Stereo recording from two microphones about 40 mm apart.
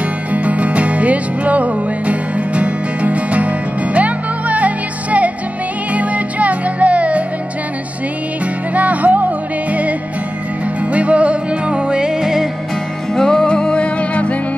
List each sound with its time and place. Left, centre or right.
0.3 s music: right
8.7 s music: right; by 12.4 s centre
13.1 s music: centre
13.5 s music: left